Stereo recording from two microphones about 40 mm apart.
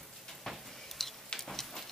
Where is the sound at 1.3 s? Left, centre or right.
Centre.